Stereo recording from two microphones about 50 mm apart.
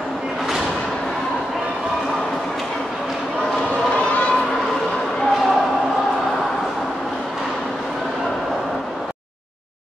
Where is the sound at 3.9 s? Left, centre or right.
Left.